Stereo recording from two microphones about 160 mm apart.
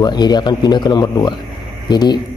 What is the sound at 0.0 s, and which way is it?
A man's voice, 25° left (ahead or behind).